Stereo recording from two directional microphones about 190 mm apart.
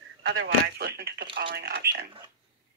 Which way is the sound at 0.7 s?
55° right (ahead or behind).